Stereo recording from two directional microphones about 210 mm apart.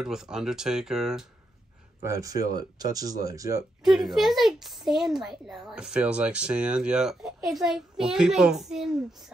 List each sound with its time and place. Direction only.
0.0 s speech: centre (ahead or behind)
2.0 s speech: 15° right (ahead or behind)
3.8 s speech: centre (ahead or behind)